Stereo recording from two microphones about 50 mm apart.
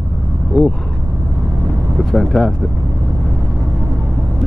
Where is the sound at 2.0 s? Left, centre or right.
Centre.